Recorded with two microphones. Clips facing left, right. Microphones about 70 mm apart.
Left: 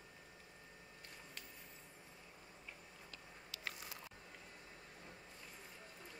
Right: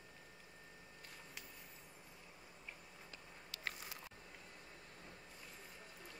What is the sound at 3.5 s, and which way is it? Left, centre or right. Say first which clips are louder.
Biting: right 2 dB; right.